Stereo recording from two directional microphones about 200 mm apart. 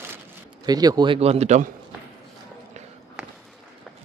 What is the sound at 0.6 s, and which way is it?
Speech, 20° right (ahead or behind).